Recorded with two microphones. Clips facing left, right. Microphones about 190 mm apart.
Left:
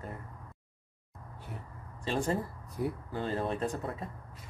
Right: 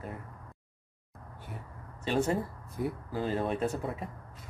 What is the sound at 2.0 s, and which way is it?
Speech, 5° right (ahead or behind).